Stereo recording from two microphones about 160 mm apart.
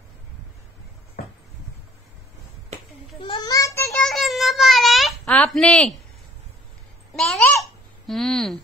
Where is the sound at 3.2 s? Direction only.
25° left (ahead or behind).